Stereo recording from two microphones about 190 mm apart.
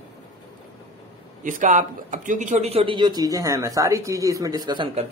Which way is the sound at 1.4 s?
45° right (ahead or behind).